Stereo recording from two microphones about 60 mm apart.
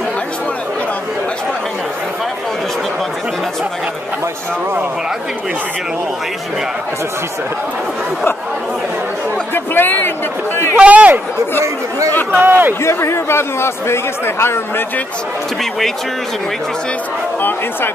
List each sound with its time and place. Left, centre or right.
9.5 s a sound: left
10.8 s a man's voice: right
12.3 s a man's voice: right
12.8 s speech: left